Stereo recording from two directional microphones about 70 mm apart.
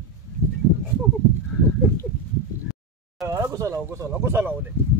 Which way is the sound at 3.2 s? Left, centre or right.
Right.